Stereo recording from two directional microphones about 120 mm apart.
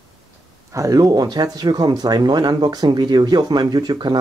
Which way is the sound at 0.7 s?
30° right (ahead or behind).